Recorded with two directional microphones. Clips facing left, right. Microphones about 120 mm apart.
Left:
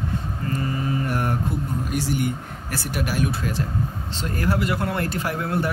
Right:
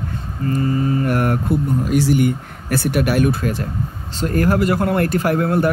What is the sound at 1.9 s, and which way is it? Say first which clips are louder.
Speech: right 9 dB; 85° right.